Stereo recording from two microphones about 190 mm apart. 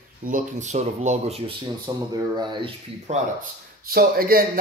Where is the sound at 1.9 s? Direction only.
20° right (ahead or behind).